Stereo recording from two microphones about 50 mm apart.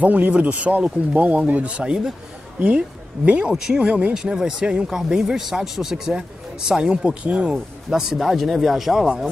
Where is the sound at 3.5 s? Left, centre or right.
Centre.